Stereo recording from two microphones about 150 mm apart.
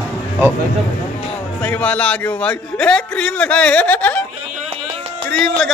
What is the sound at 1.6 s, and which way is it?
A man's voice, 10° left (ahead or behind).